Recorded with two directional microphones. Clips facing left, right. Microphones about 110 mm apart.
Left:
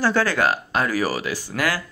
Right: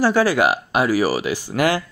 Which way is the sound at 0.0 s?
10° right (ahead or behind).